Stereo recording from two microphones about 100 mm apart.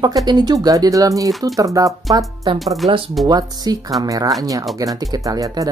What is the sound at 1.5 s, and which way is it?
Speech, 35° right (ahead or behind).